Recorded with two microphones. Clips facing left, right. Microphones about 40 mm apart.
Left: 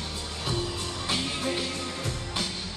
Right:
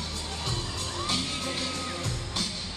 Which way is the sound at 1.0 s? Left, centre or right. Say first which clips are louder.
Left 2 dB; centre.